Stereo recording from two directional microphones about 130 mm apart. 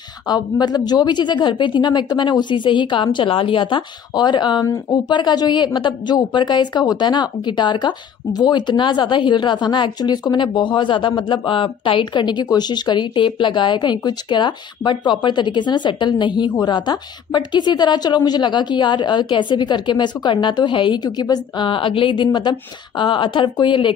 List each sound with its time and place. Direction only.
0.3 s speech: 30° left (ahead or behind)